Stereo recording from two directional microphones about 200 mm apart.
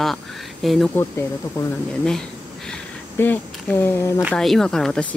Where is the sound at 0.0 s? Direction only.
Centre (ahead or behind).